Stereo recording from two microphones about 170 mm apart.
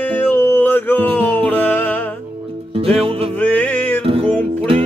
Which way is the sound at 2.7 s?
35° right (ahead or behind).